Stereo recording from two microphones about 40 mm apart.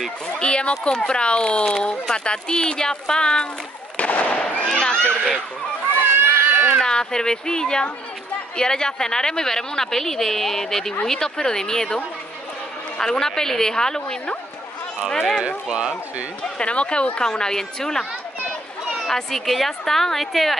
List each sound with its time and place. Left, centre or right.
0.3 s speech: left
3.9 s fireworks: left
4.6 s a sound: left
6.1 s run: right
6.8 s a woman's voice: centre
13.0 s a woman's voice: centre
15.4 s speech: right
16.5 s speech: left
17.2 s a woman's voice: centre
19.0 s a woman's voice: centre